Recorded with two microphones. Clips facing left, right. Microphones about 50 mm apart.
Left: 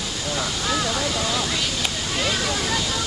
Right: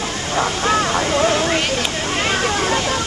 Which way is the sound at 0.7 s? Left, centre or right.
Right.